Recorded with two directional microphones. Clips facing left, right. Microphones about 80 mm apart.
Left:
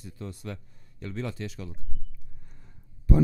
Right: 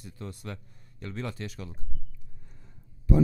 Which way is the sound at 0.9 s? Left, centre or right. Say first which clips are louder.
Left 2 dB; right.